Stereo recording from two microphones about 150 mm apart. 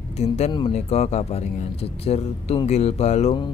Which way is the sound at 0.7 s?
45° left (ahead or behind).